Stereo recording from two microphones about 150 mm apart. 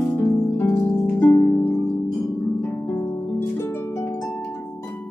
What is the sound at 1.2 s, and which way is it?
Harp, 10° left (ahead or behind).